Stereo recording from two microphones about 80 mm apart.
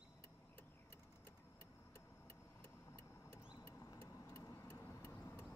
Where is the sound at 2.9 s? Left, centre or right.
Left.